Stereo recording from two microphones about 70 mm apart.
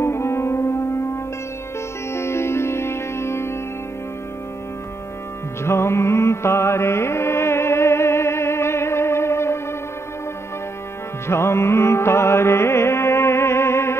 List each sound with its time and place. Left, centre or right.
0.0 s music: left
5.6 s music: left
11.2 s music: left